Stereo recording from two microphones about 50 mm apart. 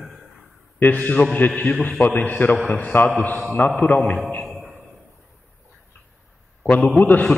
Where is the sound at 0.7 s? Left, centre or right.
Left.